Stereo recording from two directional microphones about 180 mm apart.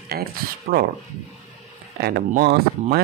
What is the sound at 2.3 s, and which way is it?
Speech, 60° right (ahead or behind).